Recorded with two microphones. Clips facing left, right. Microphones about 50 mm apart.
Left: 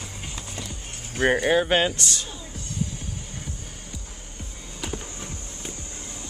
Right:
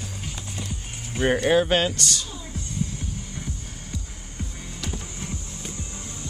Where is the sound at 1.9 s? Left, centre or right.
Left.